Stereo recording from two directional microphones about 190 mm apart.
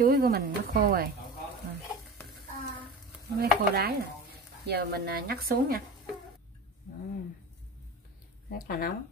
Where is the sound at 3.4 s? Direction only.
55° right (ahead or behind).